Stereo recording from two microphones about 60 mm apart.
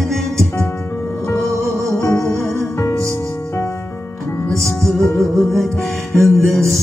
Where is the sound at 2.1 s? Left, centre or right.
Left.